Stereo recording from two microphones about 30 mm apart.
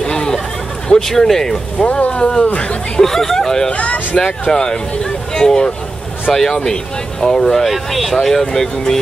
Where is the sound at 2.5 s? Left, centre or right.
Left.